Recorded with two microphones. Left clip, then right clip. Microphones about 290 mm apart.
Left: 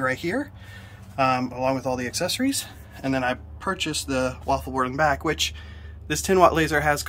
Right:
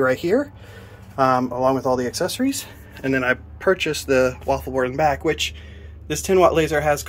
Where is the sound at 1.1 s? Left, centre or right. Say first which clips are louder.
Right 4 dB; centre.